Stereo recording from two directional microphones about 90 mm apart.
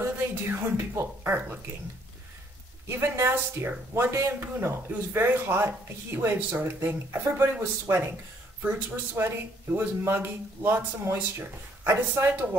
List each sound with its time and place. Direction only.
0.0 s speech: 25° right (ahead or behind)
2.9 s speech: 25° right (ahead or behind)
8.6 s speech: 20° right (ahead or behind)